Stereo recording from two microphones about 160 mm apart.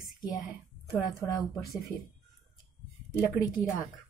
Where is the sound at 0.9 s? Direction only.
20° left (ahead or behind).